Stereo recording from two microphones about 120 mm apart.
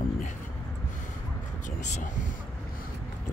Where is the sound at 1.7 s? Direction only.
85° left.